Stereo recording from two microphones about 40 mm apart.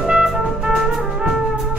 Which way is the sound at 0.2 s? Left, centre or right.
Centre.